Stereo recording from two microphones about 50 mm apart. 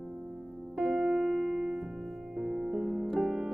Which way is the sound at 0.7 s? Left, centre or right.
Right.